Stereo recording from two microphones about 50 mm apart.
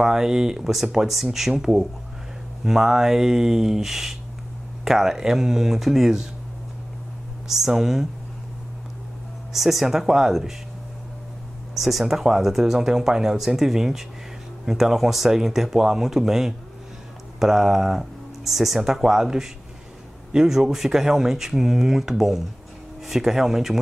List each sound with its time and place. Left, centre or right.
0.0 s speech: centre
7.4 s speech: centre
9.5 s speech: centre
11.8 s speech: centre